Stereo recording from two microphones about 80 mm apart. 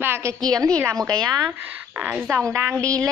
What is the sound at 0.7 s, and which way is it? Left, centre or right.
Speech, right.